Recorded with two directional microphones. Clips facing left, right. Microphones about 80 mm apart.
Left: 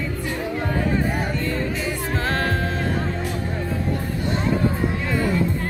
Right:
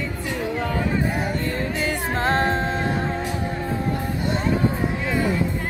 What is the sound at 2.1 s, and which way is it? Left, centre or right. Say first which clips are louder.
Music: right 3 dB; right.